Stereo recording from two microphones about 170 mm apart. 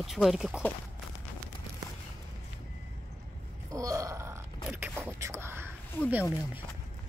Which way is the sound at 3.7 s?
20° right (ahead or behind).